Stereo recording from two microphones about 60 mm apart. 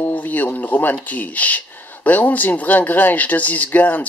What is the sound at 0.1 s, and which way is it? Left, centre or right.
Speech, left.